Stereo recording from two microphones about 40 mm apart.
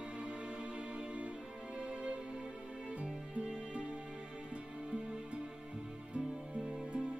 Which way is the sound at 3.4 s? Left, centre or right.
Right.